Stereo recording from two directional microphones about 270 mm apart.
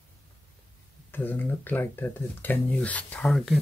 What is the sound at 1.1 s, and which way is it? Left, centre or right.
Speech, centre.